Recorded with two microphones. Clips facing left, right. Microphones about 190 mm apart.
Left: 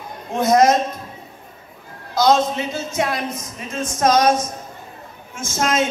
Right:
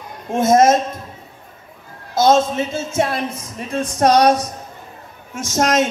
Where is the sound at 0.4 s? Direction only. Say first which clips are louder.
Right 2 dB; 25° right (ahead or behind).